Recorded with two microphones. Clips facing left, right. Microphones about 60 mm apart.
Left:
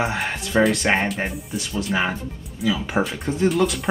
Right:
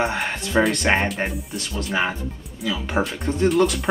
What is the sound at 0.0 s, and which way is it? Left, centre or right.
Speech, centre.